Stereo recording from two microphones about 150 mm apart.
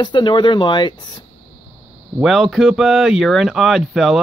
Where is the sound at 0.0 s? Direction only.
30° left (ahead or behind).